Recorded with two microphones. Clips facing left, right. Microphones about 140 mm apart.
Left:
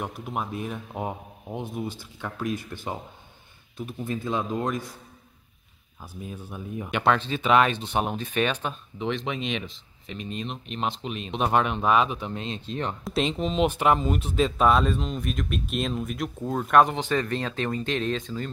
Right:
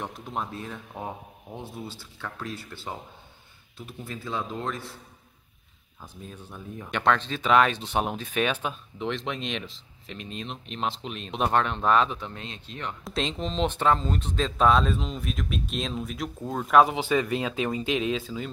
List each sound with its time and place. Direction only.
0.0 s speech: 10° left (ahead or behind)
6.2 s speech: 10° left (ahead or behind); by 12.9 s 30° left (ahead or behind)
13.0 s speech: 5° left (ahead or behind)